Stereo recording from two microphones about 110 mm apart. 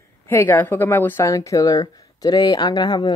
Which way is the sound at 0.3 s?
20° left (ahead or behind).